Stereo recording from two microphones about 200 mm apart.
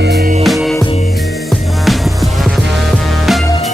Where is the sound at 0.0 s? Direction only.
55° right (ahead or behind).